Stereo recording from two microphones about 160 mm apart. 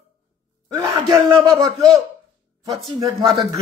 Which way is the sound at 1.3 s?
20° right (ahead or behind).